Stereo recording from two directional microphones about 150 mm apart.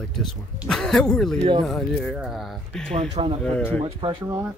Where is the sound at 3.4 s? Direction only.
5° left (ahead or behind).